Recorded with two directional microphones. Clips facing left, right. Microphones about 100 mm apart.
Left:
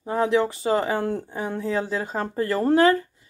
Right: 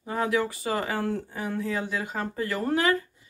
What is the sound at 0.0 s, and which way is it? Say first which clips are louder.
Speech: left 5 dB; 25° left (ahead or behind).